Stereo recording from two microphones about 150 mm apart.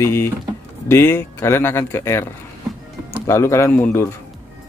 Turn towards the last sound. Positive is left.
turn(degrees=10)  # may be behind; listen again after turning